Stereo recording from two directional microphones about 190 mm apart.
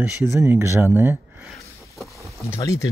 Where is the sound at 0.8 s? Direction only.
10° right (ahead or behind).